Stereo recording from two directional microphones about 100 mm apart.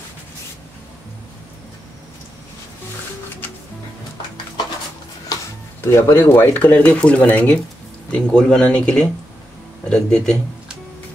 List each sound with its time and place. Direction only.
5.8 s speech: 25° left (ahead or behind); by 10.3 s 10° left (ahead or behind)